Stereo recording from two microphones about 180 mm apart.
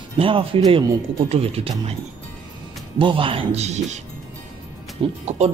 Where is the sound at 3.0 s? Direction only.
30° right (ahead or behind).